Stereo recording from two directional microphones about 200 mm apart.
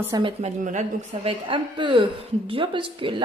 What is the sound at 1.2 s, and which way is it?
Speech, 25° right (ahead or behind).